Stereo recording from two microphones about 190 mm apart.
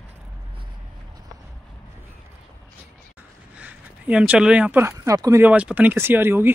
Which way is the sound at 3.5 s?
5° right (ahead or behind).